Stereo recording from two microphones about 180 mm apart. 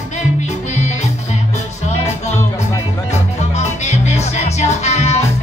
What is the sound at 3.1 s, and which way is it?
Music, 40° left (ahead or behind).